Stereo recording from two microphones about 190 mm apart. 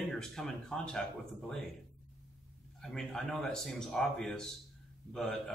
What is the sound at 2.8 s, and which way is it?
A man's voice, 5° left (ahead or behind).